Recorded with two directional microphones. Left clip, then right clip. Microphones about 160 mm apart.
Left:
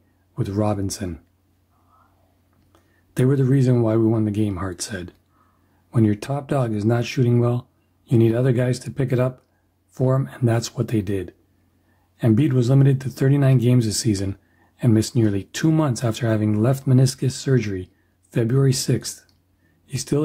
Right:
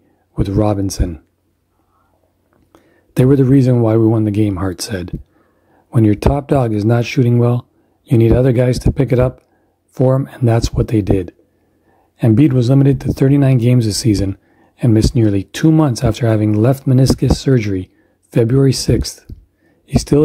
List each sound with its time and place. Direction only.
0.3 s speech: 30° right (ahead or behind)
2.7 s a sound: 35° right (ahead or behind)
3.8 s speech: 35° right (ahead or behind)